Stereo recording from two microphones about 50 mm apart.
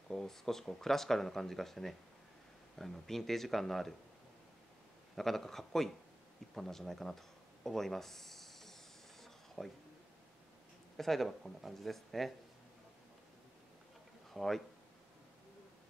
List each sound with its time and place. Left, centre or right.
0.1 s speech: centre
5.1 s speech: centre
11.0 s speech: centre
14.3 s speech: centre